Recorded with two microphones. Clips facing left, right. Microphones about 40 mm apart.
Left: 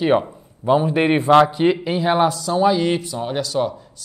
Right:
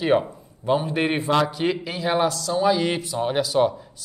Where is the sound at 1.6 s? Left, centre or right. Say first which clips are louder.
Left 6 dB; centre.